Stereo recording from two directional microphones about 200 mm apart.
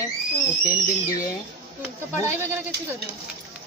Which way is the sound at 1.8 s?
10° right (ahead or behind).